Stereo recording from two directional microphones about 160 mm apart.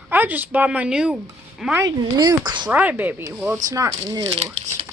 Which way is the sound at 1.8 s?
25° right (ahead or behind).